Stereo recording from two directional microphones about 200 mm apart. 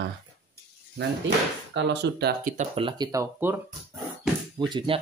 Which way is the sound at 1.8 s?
60° right (ahead or behind).